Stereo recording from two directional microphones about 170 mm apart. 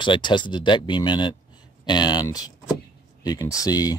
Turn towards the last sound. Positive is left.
turn(degrees=20)  # may be behind; listen again after turning